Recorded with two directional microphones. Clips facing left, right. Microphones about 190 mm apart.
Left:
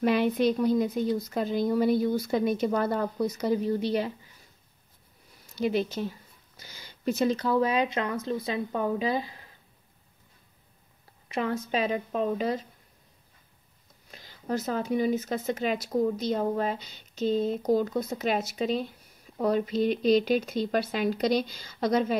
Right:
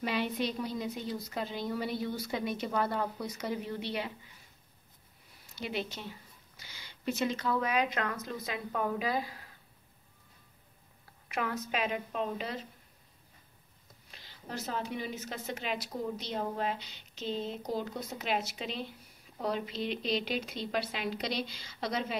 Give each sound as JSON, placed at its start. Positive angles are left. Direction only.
{"t": 0.0, "sound": "speech", "side_deg": 50}
{"t": 5.6, "sound": "speech", "side_deg": 45}
{"t": 11.2, "sound": "a woman's voice", "side_deg": 25}
{"t": 14.1, "sound": "speech", "side_deg": 45}